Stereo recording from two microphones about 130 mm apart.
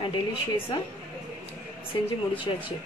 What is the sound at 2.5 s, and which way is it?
Speech, 35° left (ahead or behind).